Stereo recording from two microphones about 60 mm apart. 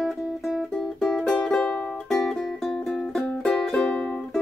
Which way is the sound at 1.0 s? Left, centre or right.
Centre.